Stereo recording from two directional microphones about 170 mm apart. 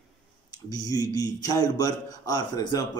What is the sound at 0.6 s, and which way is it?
A man's voice, 20° left (ahead or behind).